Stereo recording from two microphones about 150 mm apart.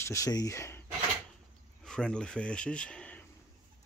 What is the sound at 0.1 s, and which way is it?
Speech, 25° left (ahead or behind).